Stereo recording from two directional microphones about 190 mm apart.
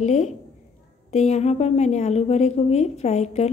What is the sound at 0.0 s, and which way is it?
Speech, 35° left (ahead or behind).